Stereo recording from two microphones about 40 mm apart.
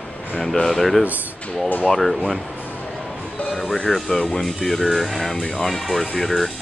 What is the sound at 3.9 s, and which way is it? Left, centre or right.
Speech, centre.